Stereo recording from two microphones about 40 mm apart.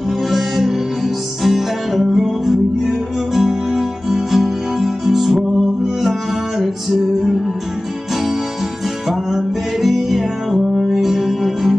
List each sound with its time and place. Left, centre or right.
0.3 s music: centre
6.6 s music: centre
9.1 s music: centre